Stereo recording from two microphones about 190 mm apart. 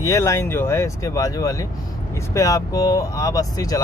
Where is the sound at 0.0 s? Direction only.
15° left (ahead or behind).